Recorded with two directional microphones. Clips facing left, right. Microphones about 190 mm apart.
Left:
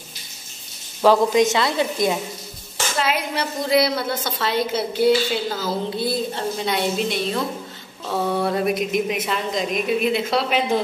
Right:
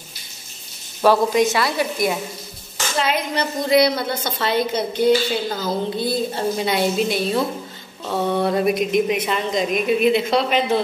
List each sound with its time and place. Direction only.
1.1 s a woman's voice: 20° left (ahead or behind)
3.0 s a woman's voice: 5° left (ahead or behind)